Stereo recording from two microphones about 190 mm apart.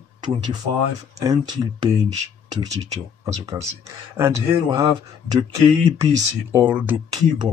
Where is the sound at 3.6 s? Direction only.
15° right (ahead or behind).